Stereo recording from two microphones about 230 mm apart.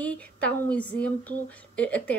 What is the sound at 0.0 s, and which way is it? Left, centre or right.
Speech, centre.